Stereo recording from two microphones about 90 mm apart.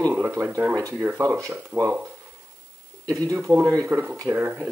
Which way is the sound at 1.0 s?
25° right (ahead or behind).